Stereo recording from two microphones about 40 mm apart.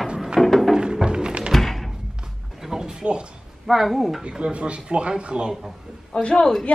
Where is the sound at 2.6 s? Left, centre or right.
Centre.